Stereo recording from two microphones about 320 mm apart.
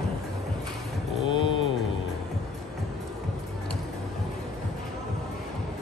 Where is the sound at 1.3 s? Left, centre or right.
Centre.